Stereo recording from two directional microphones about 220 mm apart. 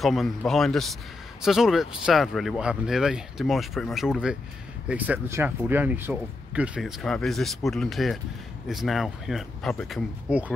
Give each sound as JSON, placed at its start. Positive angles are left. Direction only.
{"t": 0.0, "sound": "speech", "side_deg": 0}